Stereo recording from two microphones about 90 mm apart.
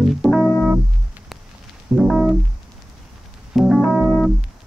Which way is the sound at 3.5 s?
Centre (ahead or behind).